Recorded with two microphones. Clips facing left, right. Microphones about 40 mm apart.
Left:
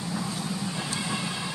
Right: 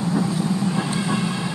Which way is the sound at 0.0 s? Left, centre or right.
Right.